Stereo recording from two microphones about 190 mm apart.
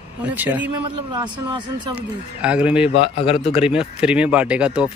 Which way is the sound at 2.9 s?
30° left (ahead or behind).